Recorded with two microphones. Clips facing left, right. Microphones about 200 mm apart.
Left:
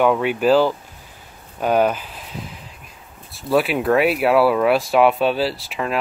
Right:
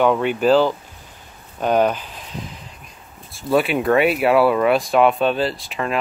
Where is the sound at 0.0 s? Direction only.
5° left (ahead or behind).